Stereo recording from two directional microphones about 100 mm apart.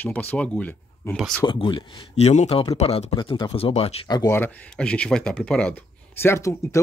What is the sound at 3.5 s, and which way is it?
Speech, 75° left (ahead or behind).